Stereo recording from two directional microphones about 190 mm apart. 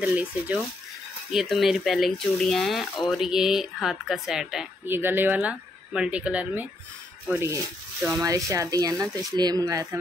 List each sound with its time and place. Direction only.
0.0 s speech: 5° right (ahead or behind)